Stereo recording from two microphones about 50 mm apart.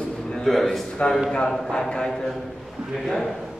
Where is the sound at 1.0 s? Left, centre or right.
Centre.